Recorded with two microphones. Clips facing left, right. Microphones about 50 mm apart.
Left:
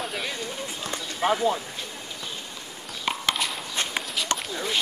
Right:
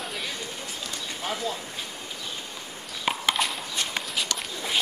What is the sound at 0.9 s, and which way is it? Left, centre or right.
Speech, left.